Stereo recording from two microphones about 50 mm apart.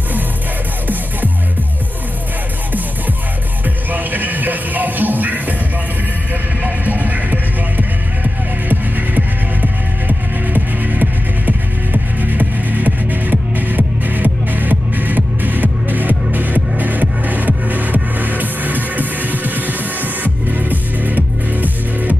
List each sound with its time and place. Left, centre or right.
3.6 s music: right
6.6 s music: right